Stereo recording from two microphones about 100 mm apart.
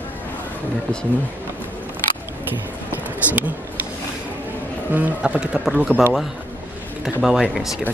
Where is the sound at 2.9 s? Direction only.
15° right (ahead or behind).